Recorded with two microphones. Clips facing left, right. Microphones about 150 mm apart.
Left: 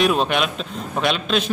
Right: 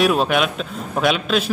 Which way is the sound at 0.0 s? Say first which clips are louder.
Right 2 dB; 5° right (ahead or behind).